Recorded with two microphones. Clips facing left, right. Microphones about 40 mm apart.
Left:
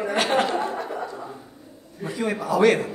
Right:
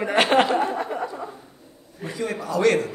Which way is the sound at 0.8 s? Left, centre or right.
Right.